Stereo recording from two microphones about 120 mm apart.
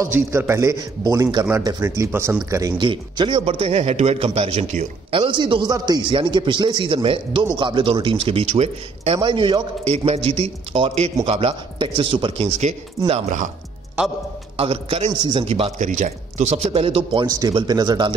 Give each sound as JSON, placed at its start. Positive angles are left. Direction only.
{"t": 0.0, "sound": "a man's voice", "side_deg": -20}
{"t": 2.8, "sound": "a man's voice", "side_deg": -45}
{"t": 5.1, "sound": "a man's voice", "side_deg": -45}
{"t": 9.8, "sound": "a man's voice", "side_deg": -55}
{"t": 14.0, "sound": "a man's voice", "side_deg": -15}
{"t": 14.6, "sound": "a man's voice", "side_deg": -55}
{"t": 15.1, "sound": "speech", "side_deg": -40}
{"t": 15.4, "sound": "a man's voice", "side_deg": -55}
{"t": 15.8, "sound": "a man's voice", "side_deg": -90}
{"t": 17.3, "sound": "speech", "side_deg": -30}